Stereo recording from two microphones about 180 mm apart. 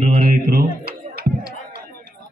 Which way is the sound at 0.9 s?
60° right (ahead or behind).